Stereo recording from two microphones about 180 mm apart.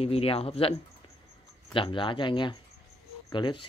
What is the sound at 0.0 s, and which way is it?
Speech, 35° left (ahead or behind).